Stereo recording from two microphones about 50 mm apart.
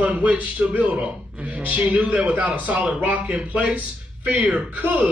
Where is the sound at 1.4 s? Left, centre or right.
Right.